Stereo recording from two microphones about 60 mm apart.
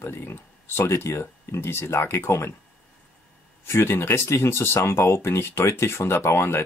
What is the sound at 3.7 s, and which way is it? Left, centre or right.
Speech, left.